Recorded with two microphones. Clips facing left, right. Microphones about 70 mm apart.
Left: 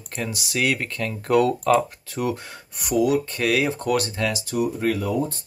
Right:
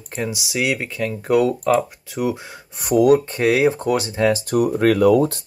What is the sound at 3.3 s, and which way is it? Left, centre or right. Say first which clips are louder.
Speech: right 5 dB; right.